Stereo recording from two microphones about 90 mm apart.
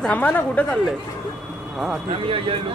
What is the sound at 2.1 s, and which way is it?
Speech, 90° right.